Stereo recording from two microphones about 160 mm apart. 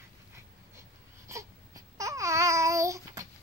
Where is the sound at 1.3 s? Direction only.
20° right (ahead or behind).